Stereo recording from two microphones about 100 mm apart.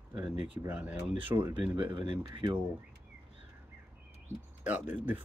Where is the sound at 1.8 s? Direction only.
55° right (ahead or behind).